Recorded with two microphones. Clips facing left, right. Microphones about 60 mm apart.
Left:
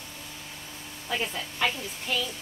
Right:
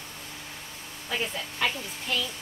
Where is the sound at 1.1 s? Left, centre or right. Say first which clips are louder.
Even; centre.